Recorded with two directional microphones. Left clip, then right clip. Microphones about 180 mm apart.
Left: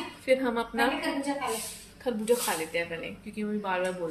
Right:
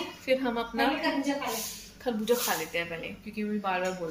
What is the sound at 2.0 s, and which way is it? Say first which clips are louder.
Speech: left 1 dB; centre (ahead or behind).